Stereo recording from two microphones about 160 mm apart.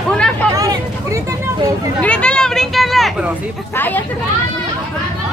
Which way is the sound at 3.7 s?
10° left (ahead or behind).